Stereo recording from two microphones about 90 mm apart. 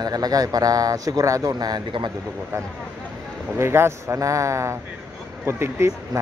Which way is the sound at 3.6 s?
30° right (ahead or behind).